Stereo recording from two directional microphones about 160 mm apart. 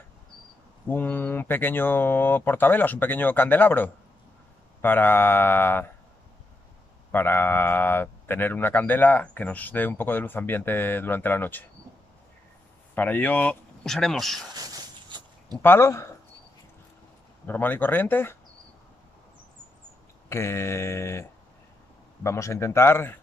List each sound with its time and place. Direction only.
0.8 s speech: 10° left (ahead or behind)
7.1 s speech: 15° left (ahead or behind)
12.9 s speech: 10° left (ahead or behind)
14.5 s a sound: 25° right (ahead or behind)
15.6 s speech: 15° left (ahead or behind)
17.5 s speech: 10° left (ahead or behind)
20.2 s speech: 15° left (ahead or behind)